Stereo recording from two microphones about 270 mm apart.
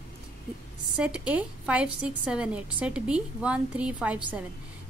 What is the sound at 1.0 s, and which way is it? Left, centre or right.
Speech, centre.